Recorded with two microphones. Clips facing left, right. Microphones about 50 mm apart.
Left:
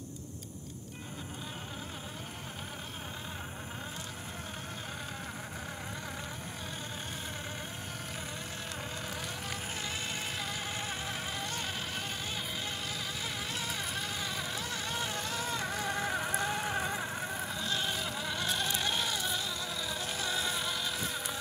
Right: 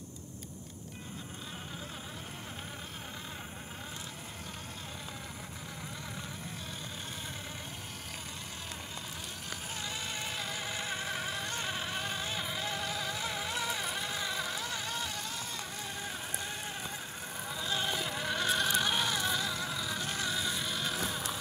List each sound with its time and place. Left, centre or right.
9.8 s music: centre
11.1 s insect: centre
12.7 s vehicle: centre
13.5 s vehicle: centre
14.1 s vehicle: centre
15.2 s music: left
16.4 s a sound: left
17.6 s insect: centre
18.4 s a sound: centre
19.7 s vehicle: centre
20.4 s music: centre